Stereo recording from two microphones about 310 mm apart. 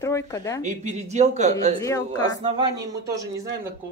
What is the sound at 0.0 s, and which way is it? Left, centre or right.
Speech, centre.